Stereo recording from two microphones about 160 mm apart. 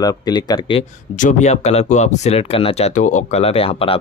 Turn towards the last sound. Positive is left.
turn(degrees=35)  # may be behind; listen again after turning